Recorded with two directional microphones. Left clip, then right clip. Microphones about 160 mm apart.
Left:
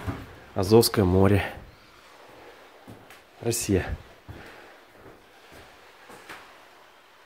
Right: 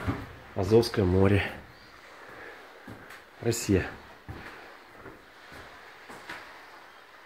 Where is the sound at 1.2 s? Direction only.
30° left (ahead or behind).